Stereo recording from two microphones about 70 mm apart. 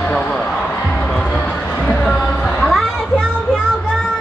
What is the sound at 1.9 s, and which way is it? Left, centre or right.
Music, centre.